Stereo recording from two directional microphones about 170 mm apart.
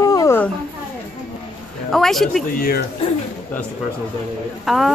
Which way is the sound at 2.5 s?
65° left (ahead or behind).